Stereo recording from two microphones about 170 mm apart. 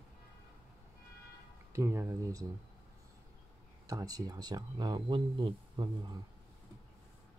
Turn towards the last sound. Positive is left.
turn(degrees=-25)  # may be behind; listen again after turning